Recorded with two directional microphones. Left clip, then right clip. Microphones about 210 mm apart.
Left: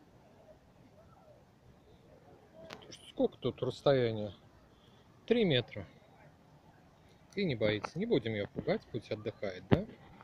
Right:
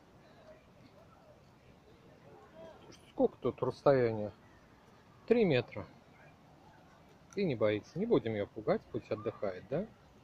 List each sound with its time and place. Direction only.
2.9 s speech: 5° left (ahead or behind)
7.3 s speech: centre (ahead or behind)